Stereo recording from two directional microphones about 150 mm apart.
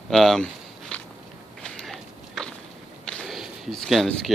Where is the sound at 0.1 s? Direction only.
Centre (ahead or behind).